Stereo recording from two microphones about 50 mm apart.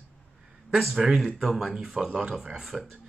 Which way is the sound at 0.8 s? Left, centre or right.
Centre.